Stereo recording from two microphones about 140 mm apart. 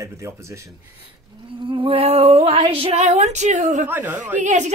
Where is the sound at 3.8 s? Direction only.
15° right (ahead or behind).